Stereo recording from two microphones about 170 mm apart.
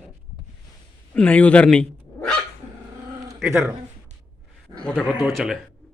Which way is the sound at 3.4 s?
Centre (ahead or behind).